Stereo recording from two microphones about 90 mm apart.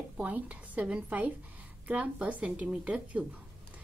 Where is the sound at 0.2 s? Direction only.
15° right (ahead or behind).